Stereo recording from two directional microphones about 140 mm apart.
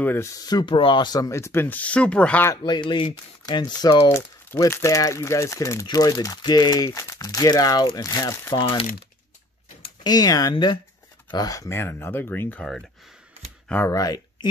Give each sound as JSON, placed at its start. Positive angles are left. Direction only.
{"t": 0.0, "sound": "speech", "side_deg": 15}
{"t": 2.5, "sound": "speech", "side_deg": 35}
{"t": 4.1, "sound": "speech", "side_deg": 20}
{"t": 10.0, "sound": "speech", "side_deg": 25}
{"t": 13.9, "sound": "speech", "side_deg": 30}